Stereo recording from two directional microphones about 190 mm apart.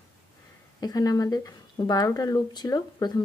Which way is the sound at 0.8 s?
20° left (ahead or behind).